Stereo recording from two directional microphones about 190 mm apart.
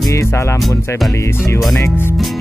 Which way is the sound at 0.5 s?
Centre (ahead or behind).